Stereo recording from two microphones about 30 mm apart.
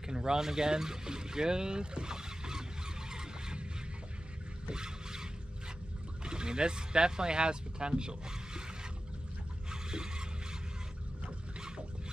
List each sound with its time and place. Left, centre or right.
0.0 s boat: right
4.6 s boat: right
6.2 s speech: right
9.7 s scrape: right